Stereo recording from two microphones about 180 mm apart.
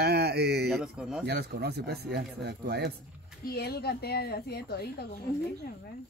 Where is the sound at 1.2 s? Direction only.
65° right (ahead or behind).